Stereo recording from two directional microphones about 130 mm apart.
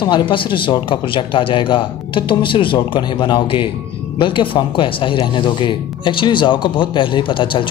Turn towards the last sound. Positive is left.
turn(degrees=40)  # may be behind; listen again after turning